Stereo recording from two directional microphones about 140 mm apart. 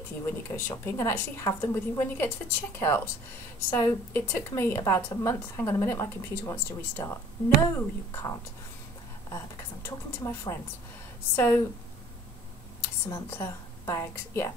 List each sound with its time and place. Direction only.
0.6 s a woman's voice: 15° left (ahead or behind)
9.8 s a woman's voice: 20° left (ahead or behind)
12.8 s speech: 15° left (ahead or behind)